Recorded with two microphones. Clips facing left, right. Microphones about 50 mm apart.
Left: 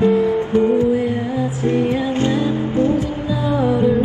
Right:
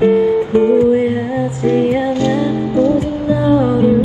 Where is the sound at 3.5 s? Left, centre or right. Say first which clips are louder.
Right 4 dB; right.